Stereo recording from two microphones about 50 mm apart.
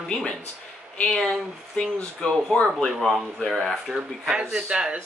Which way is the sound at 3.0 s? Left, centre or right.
Centre.